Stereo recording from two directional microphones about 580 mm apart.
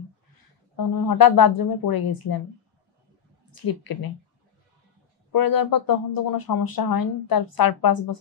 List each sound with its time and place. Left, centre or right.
0.7 s speech: left
3.6 s speech: left
5.3 s speech: left